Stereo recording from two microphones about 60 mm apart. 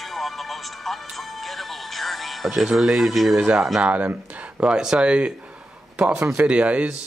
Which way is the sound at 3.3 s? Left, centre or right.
Centre.